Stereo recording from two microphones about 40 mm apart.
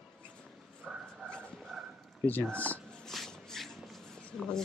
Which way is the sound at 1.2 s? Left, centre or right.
Left.